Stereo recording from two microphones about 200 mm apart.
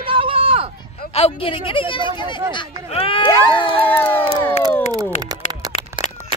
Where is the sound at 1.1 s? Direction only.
30° left (ahead or behind).